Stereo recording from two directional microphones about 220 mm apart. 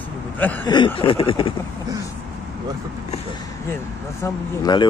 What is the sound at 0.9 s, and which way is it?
Speech, 25° left (ahead or behind).